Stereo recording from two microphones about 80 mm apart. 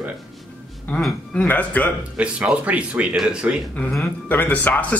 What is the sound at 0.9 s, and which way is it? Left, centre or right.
Speech, left.